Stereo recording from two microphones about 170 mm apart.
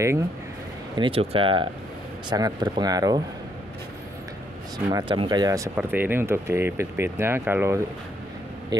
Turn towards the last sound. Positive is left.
turn(degrees=-15)  # may be behind; listen again after turning